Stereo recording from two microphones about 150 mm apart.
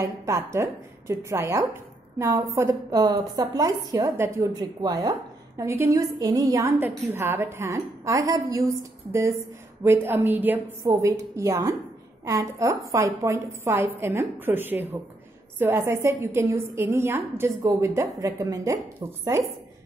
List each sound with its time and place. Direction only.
0.0 s a woman's voice: 20° right (ahead or behind)